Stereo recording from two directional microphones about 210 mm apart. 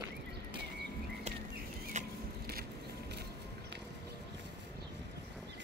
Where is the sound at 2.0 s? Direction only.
35° right (ahead or behind).